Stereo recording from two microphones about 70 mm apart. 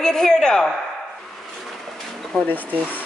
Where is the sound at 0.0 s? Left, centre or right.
Centre.